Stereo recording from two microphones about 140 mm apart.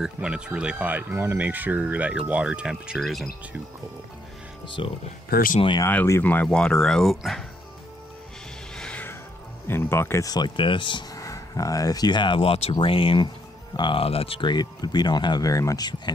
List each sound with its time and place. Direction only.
0.0 s speech: 5° right (ahead or behind)
4.6 s speech: 35° left (ahead or behind)
5.3 s speech: 90° left
5.9 s speech: 15° left (ahead or behind)
8.7 s music: 10° left (ahead or behind)
9.7 s speech: 15° left (ahead or behind)